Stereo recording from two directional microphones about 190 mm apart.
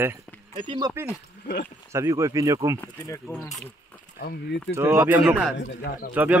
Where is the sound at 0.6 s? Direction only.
20° right (ahead or behind).